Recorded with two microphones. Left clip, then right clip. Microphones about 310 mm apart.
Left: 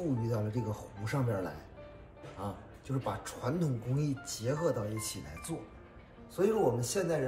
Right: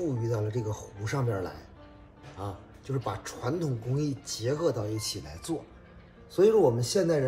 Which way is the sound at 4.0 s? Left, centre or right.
Right.